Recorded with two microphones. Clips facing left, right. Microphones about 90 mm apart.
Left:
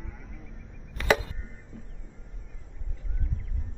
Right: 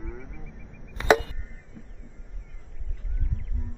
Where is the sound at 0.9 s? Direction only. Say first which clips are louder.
Right 4 dB; 20° right (ahead or behind).